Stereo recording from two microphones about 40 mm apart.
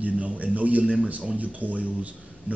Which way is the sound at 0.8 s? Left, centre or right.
Right.